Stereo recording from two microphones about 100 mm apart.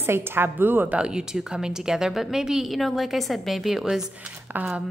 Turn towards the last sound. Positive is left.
turn(degrees=-20)  # may be behind; listen again after turning